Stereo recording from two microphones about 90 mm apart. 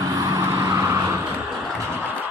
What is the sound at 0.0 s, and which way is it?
Vehicle, 40° right (ahead or behind).